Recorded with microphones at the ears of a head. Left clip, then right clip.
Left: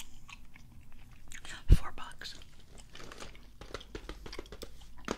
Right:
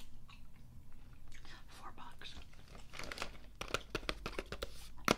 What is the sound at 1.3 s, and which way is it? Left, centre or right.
Whispering, left.